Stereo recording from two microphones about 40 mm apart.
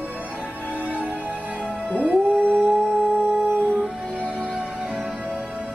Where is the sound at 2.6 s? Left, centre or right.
Right.